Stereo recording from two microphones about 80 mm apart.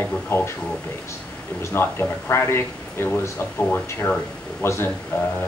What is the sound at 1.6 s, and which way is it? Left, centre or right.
Speech, left.